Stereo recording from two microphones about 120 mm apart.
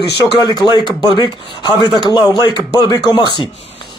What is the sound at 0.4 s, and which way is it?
Speech, 35° left (ahead or behind).